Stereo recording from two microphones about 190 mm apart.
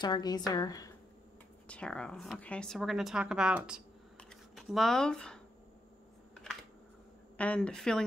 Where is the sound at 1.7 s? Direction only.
5° left (ahead or behind).